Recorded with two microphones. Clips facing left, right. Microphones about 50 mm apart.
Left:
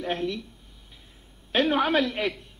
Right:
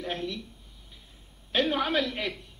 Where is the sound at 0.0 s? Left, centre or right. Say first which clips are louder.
Left 5 dB; left.